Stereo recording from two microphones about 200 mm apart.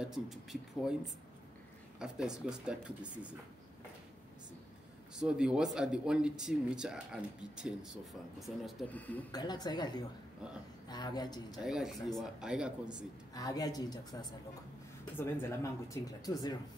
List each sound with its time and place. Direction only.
0.0 s speech: centre (ahead or behind)
5.1 s speech: 5° right (ahead or behind)
9.3 s a woman's voice: 20° left (ahead or behind)
11.6 s speech: centre (ahead or behind)
13.3 s a woman's voice: 20° left (ahead or behind)